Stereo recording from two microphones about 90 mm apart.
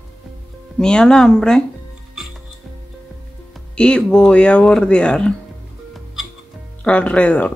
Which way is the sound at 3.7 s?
10° left (ahead or behind).